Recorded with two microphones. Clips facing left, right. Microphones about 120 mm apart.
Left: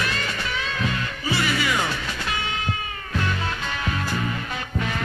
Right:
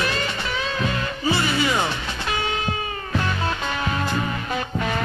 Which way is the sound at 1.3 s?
25° right (ahead or behind).